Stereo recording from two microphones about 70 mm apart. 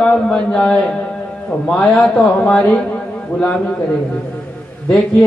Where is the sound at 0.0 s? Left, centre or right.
Centre.